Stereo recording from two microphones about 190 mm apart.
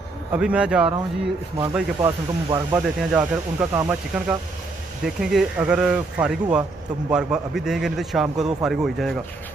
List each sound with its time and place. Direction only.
0.3 s a man's voice: 5° right (ahead or behind)
2.0 s speech: 20° right (ahead or behind)
3.0 s a man's voice: 5° right (ahead or behind)